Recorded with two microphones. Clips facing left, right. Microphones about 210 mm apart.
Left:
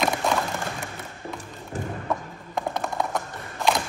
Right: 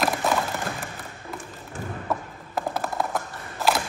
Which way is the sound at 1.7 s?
40° left (ahead or behind).